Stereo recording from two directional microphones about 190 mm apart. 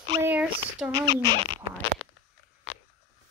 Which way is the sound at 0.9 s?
20° right (ahead or behind).